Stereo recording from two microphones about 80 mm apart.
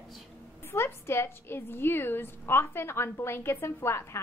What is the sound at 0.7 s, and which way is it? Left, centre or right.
A woman's voice, left.